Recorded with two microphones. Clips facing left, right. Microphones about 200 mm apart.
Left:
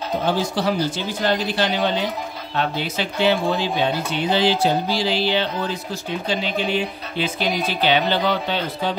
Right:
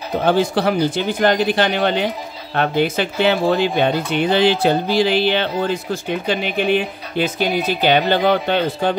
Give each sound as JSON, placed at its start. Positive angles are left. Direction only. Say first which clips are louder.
{"t": 0.2, "sound": "speech", "louder": "right 7 dB", "side_deg": -60}